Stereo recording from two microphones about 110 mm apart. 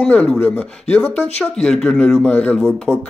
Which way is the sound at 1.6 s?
5° left (ahead or behind).